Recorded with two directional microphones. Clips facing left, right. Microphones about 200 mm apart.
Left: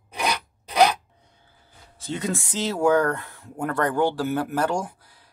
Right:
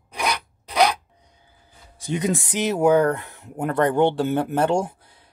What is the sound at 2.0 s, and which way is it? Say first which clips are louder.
Speech: right 4 dB; 15° right (ahead or behind).